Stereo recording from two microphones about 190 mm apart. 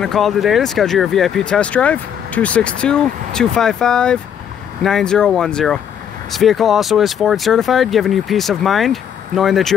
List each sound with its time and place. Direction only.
0.0 s speech: centre (ahead or behind)